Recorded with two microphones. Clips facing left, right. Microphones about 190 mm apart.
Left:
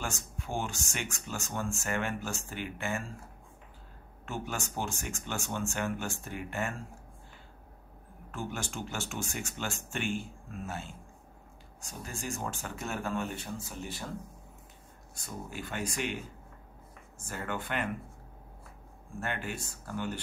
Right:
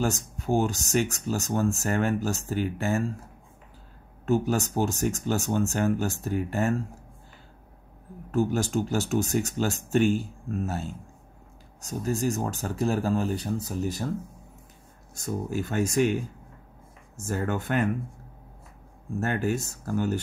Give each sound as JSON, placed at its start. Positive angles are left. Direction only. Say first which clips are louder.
{"t": 0.4, "sound": "speech", "louder": "right 11 dB", "side_deg": -40}
{"t": 4.3, "sound": "speech", "louder": "right 13 dB", "side_deg": -40}
{"t": 8.3, "sound": "speech", "louder": "right 13 dB", "side_deg": -40}
{"t": 15.1, "sound": "speech", "louder": "right 11 dB", "side_deg": -45}
{"t": 17.2, "sound": "speech", "louder": "right 8 dB", "side_deg": -45}
{"t": 19.1, "sound": "speech", "louder": "right 10 dB", "side_deg": -40}